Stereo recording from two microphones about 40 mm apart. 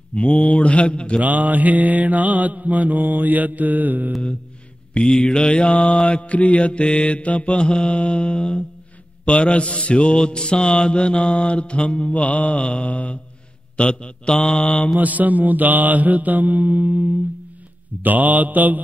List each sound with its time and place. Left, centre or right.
0.1 s mantra: left
0.5 s a man's voice: left
1.2 s mantra: right
4.9 s mantra: left
14.3 s mantra: centre
14.6 s mantra: left
15.0 s mantra: right